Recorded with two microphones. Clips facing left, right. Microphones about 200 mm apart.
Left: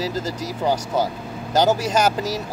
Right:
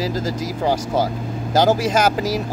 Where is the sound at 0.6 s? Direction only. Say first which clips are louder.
Right 1 dB; 10° right (ahead or behind).